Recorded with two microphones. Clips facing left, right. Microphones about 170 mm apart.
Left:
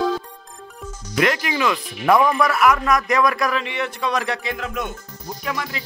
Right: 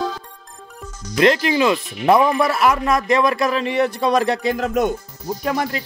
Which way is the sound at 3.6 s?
40° right (ahead or behind).